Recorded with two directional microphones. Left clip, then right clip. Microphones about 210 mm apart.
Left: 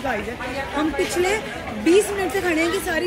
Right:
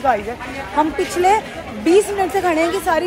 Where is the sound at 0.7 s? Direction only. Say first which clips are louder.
Right 5 dB; 5° left (ahead or behind).